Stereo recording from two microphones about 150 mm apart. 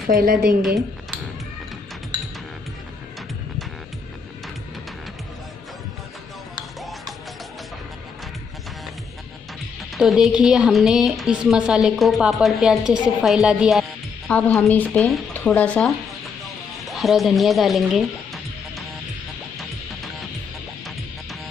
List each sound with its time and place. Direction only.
0.0 s a woman's voice: 80° right
9.9 s a woman's voice: centre (ahead or behind)
14.3 s a woman's voice: 10° left (ahead or behind)
16.8 s music: centre (ahead or behind)